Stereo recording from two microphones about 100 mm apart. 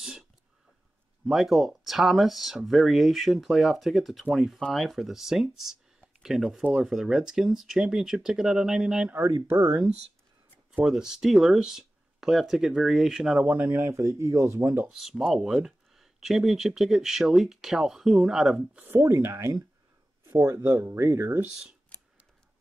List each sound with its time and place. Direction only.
1.2 s speech: centre (ahead or behind)
10.8 s speech: 5° right (ahead or behind); by 14.9 s 30° right (ahead or behind)
14.9 s speech: 5° right (ahead or behind)
18.8 s speech: 20° right (ahead or behind)